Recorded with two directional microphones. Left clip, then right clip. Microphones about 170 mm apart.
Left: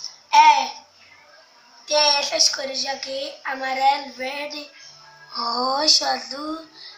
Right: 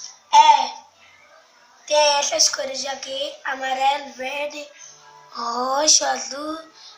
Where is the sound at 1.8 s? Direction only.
10° right (ahead or behind).